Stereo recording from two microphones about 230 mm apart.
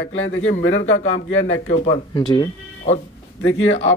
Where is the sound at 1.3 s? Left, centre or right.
Left.